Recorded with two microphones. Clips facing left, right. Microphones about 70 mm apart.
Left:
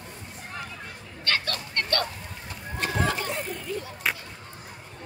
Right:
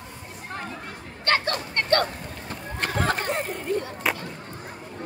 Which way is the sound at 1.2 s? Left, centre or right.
Right.